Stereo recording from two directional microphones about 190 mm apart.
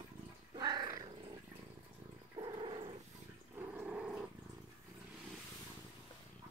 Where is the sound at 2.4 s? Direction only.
25° right (ahead or behind).